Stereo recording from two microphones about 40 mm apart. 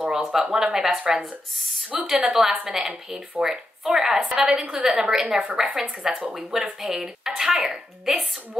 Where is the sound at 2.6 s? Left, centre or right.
Right.